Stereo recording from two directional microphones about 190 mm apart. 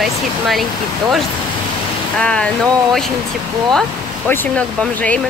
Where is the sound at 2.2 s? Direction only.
5° left (ahead or behind).